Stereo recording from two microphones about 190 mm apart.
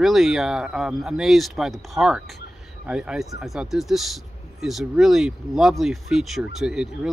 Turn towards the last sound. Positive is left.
turn(degrees=-5)  # may be behind; listen again after turning